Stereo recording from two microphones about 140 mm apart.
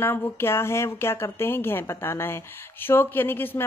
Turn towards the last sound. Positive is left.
turn(degrees=15)  # may be behind; listen again after turning